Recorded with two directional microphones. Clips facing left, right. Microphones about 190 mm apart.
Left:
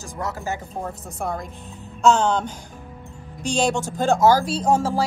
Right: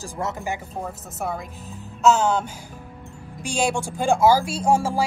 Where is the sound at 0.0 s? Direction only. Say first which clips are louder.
Right 1 dB; 20° right (ahead or behind).